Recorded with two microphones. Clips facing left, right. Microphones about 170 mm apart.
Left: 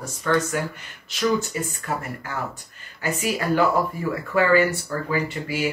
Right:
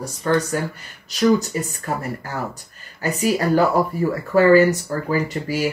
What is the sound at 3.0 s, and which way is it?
Speech, 40° right (ahead or behind).